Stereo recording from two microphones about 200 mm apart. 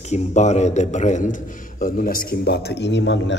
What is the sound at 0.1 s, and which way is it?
A man's voice, 35° left (ahead or behind).